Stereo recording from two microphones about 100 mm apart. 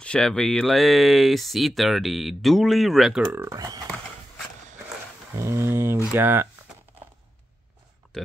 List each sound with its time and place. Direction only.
0.0 s speech: 10° left (ahead or behind)
3.4 s speech: 40° right (ahead or behind)
5.3 s speech: 30° right (ahead or behind)
8.0 s a sound: centre (ahead or behind)